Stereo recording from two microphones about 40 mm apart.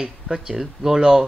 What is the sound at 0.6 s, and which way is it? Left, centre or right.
Speech, centre.